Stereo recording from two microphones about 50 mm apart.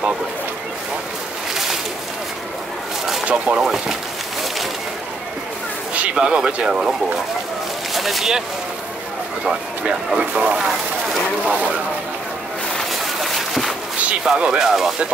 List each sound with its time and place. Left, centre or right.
3.3 s speech: right
3.6 s speech: centre
5.9 s speech: right
7.9 s speech: centre
9.4 s speech: centre
11.4 s speech: right
13.0 s a sound: centre
14.4 s speech: centre